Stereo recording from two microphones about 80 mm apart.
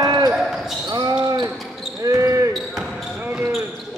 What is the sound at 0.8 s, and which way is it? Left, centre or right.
Basketball bounce, right.